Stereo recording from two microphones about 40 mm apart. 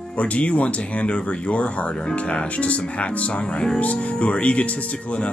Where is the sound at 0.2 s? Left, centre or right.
Left.